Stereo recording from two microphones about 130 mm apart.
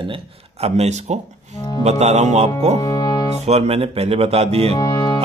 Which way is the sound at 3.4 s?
55° right (ahead or behind).